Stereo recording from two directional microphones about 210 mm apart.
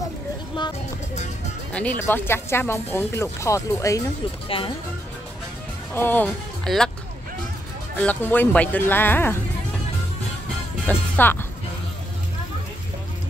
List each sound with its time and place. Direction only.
1.1 s music: 35° left (ahead or behind)
1.7 s speech: 5° left (ahead or behind)
5.9 s speech: 10° left (ahead or behind)
8.0 s speech: 10° left (ahead or behind)
10.9 s speech: 10° left (ahead or behind)